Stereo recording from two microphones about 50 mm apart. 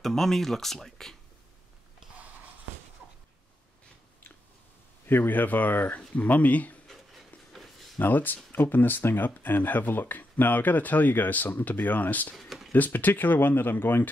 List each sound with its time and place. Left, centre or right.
0.0 s speech: centre
5.0 s speech: left
7.5 s a sound: centre
8.0 s speech: left
12.4 s a sound: centre
12.7 s speech: left